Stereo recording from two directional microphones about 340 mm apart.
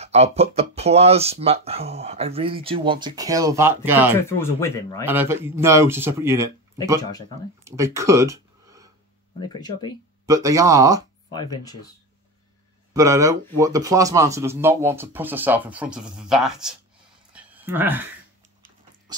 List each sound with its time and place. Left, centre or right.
0.0 s speech: centre
4.4 s speech: centre
5.0 s speech: centre
7.0 s speech: centre
7.6 s a sound: centre
9.4 s speech: centre
10.2 s speech: centre
11.3 s speech: centre
12.9 s speech: centre
17.3 s a sound: centre